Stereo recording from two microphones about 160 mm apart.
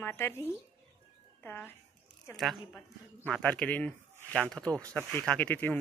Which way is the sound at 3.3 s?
5° left (ahead or behind).